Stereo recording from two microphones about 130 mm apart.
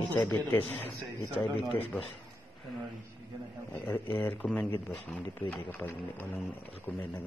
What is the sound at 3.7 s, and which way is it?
A man's voice, 15° left (ahead or behind).